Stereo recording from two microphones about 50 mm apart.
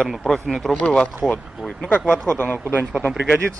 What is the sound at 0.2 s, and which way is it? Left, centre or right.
Speech, centre.